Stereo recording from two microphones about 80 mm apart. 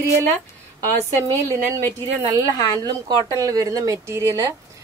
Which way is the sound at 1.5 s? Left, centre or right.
Left.